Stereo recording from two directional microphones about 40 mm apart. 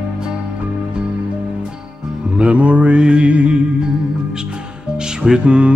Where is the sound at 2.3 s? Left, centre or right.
Right.